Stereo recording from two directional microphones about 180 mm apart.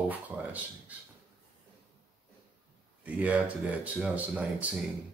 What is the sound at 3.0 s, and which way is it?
Speech, 10° right (ahead or behind).